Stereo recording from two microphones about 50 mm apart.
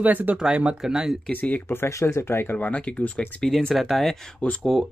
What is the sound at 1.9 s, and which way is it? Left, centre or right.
Speech, left.